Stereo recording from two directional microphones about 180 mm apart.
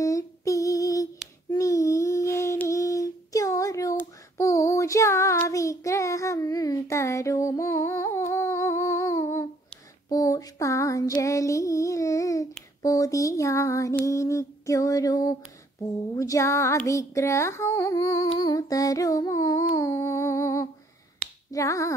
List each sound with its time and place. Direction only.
0.0 s child singing: 20° left (ahead or behind)
1.5 s humming: 20° left (ahead or behind)
10.0 s female singing: 20° left (ahead or behind)
12.8 s a sound: 20° left (ahead or behind)
16.2 s music: 15° left (ahead or behind)
18.4 s a sound: 20° left (ahead or behind)
19.7 s music: 15° left (ahead or behind)
21.5 s finger snapping: 20° left (ahead or behind)